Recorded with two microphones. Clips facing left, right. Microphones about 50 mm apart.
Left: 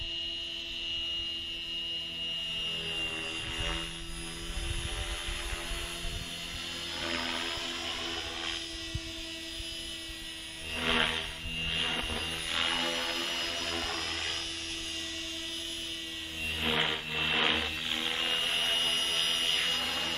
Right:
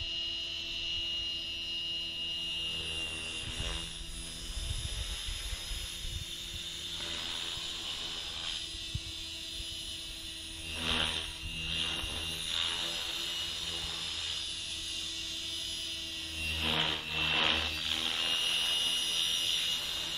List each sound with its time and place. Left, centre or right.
7.0 s music: left
10.8 s aircraft: left
16.4 s a sound: centre; by 20.2 s left